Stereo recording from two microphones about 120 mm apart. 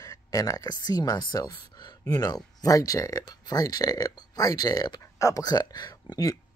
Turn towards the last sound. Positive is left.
turn(degrees=35)  # may be behind; listen again after turning